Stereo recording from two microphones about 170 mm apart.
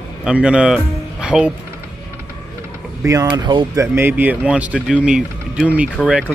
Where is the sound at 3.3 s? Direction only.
25° right (ahead or behind).